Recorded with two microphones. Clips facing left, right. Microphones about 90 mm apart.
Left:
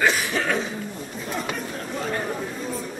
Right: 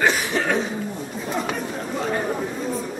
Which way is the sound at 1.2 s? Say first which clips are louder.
Right 3 dB; 10° right (ahead or behind).